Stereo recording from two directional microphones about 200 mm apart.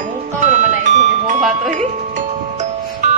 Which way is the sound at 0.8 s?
35° right (ahead or behind).